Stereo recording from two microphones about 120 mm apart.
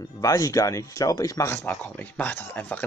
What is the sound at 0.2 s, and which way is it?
Speech, 30° left (ahead or behind).